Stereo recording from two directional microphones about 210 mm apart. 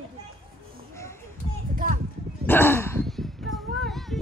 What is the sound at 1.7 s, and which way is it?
Clip-clop, 40° right (ahead or behind).